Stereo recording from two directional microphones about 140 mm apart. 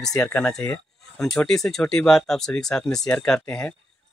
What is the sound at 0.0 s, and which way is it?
Speech, 5° left (ahead or behind).